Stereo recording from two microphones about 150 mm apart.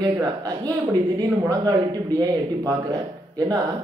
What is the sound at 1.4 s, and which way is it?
A man's voice, 25° right (ahead or behind).